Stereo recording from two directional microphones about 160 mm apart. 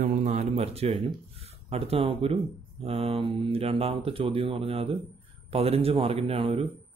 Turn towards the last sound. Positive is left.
turn(degrees=-35)  # may be behind; listen again after turning